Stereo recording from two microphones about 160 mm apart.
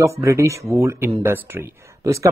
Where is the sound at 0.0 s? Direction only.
20° right (ahead or behind).